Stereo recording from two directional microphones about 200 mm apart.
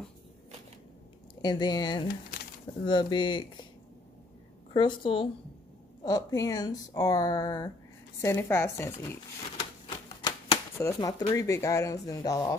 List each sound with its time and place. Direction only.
1.4 s speech: 20° left (ahead or behind)
4.7 s speech: 25° left (ahead or behind)